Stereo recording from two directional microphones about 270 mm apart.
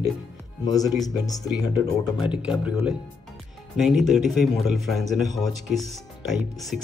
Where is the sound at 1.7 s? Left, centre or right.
Centre.